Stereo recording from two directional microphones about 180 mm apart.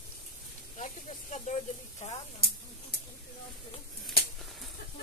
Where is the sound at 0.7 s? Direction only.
40° left (ahead or behind).